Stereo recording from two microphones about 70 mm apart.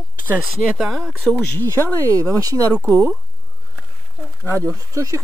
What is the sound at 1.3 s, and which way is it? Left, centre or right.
Speech, left.